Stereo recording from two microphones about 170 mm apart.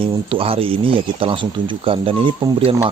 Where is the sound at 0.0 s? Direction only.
30° right (ahead or behind).